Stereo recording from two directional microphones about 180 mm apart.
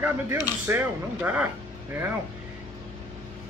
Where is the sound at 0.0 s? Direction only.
10° right (ahead or behind).